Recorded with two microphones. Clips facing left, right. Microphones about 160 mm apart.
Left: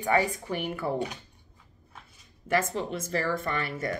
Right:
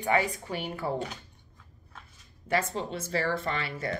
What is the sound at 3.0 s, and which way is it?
Speech, 50° left (ahead or behind).